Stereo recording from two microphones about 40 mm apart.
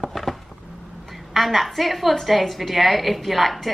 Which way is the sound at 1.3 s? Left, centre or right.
Centre.